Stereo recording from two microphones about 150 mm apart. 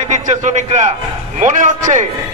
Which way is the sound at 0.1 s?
55° right (ahead or behind).